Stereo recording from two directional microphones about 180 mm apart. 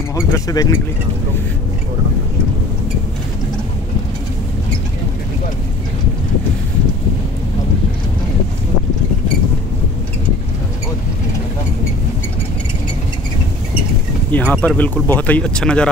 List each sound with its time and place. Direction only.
0.1 s speech: 20° left (ahead or behind)
14.3 s speech: 10° left (ahead or behind)